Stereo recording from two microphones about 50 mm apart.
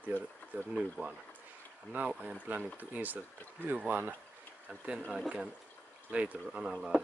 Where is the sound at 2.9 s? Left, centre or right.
Right.